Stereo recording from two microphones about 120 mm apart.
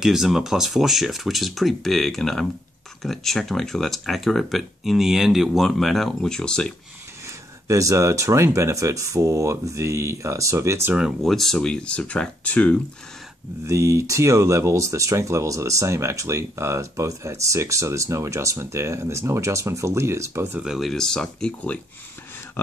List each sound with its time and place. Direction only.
0.0 s speech: 5° right (ahead or behind)
7.6 s speech: 25° right (ahead or behind)
11.0 s speech: centre (ahead or behind)
13.7 s speech: 25° right (ahead or behind)
20.6 s speech: centre (ahead or behind)